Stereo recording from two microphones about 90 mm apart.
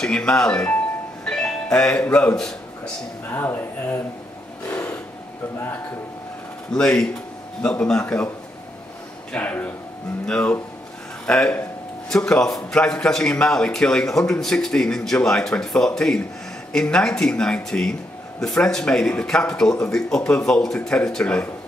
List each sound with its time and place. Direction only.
0.0 s speech: 10° left (ahead or behind)
2.3 s a sound: 5° left (ahead or behind)
3.3 s speech: 25° left (ahead or behind)
6.7 s a man's voice: 10° left (ahead or behind)
9.3 s a man's voice: 20° left (ahead or behind)